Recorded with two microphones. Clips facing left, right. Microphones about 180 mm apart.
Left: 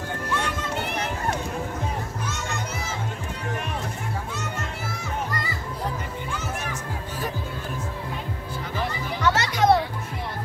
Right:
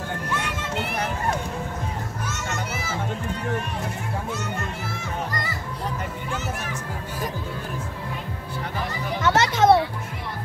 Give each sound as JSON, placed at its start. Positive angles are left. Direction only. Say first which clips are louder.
{"t": 9.2, "sound": "children playing", "louder": "right 2 dB", "side_deg": -25}